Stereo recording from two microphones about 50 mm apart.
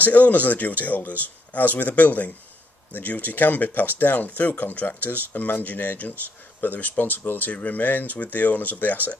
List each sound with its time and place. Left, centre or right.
0.0 s speech: left